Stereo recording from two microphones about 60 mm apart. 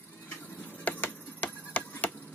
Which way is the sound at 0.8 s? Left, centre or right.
Left.